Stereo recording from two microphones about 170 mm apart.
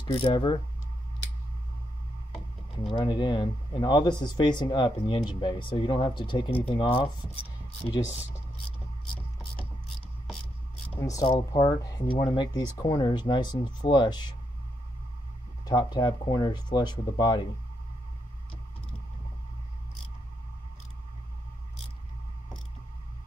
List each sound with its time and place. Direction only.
0.0 s speech: 30° left (ahead or behind)
2.9 s speech: 25° left (ahead or behind)
10.9 s speech: 15° left (ahead or behind)
15.6 s speech: 25° left (ahead or behind)